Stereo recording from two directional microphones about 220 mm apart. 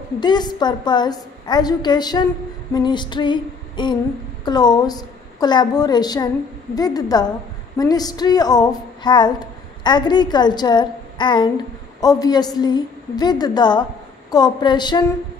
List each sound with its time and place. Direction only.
0.2 s a woman's voice: 20° left (ahead or behind)